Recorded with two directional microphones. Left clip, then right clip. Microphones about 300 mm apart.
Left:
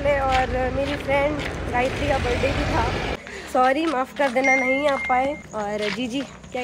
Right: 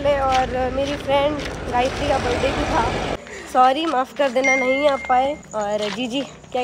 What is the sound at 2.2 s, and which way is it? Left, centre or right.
Speech, right.